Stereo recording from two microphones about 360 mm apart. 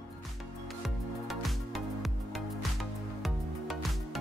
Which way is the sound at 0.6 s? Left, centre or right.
Centre.